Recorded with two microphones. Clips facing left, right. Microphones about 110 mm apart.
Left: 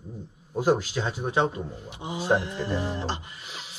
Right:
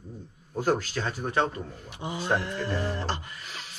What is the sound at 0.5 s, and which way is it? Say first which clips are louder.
Speech: left 3 dB; 15° left (ahead or behind).